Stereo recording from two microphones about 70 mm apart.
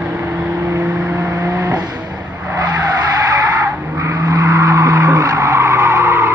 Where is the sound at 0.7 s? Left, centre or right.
Right.